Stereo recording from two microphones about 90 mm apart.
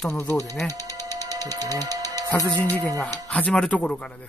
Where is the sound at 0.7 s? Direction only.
45° right (ahead or behind).